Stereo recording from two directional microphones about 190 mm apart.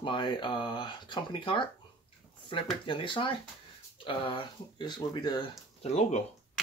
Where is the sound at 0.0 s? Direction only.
25° left (ahead or behind).